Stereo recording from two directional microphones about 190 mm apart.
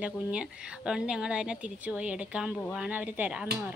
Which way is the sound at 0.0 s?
5° right (ahead or behind).